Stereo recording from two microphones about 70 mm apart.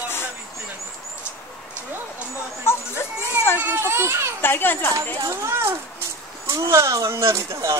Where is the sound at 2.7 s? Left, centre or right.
Left.